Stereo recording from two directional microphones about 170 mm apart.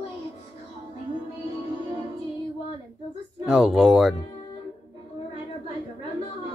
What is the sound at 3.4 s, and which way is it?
Speech, 5° right (ahead or behind).